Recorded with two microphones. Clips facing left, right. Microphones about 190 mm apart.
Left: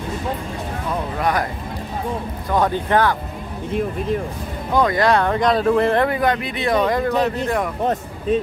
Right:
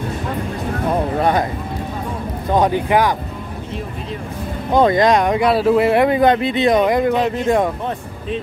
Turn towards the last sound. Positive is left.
turn(degrees=-15)  # may be behind; listen again after turning